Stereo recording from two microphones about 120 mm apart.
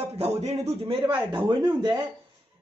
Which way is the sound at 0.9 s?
40° right (ahead or behind).